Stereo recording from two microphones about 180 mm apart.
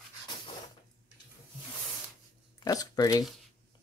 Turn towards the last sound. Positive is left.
turn(degrees=20)  # may be behind; listen again after turning